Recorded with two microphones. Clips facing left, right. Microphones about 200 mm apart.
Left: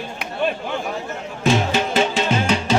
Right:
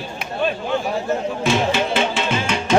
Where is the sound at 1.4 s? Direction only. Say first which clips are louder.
Left 3 dB; 40° left (ahead or behind).